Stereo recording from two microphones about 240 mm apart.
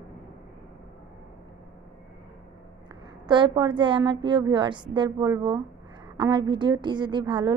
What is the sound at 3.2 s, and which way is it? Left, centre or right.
A woman's voice, centre.